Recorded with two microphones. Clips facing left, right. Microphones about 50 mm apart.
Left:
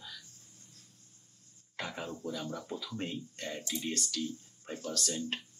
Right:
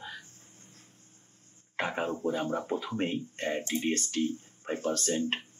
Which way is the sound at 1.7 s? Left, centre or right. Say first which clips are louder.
Right 8 dB; right.